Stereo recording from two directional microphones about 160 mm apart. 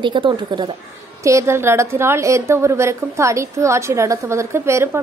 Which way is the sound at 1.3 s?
15° right (ahead or behind).